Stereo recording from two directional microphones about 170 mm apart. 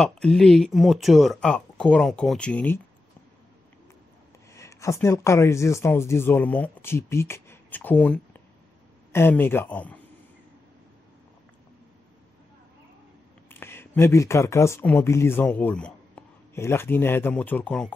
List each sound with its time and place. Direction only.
0.0 s speech: 5° left (ahead or behind)
4.6 s speech: 20° left (ahead or behind)
13.5 s speech: 15° left (ahead or behind)